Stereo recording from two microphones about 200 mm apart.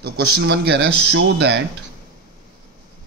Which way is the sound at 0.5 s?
60° right (ahead or behind).